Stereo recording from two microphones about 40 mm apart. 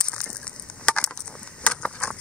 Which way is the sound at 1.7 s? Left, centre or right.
Left.